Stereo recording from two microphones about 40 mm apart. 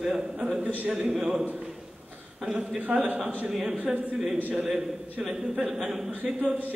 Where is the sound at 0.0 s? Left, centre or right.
Centre.